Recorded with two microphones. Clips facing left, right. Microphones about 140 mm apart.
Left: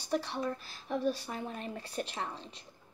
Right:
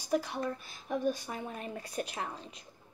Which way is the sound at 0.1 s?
10° right (ahead or behind).